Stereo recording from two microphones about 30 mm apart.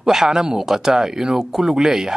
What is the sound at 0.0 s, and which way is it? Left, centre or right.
Speech, centre.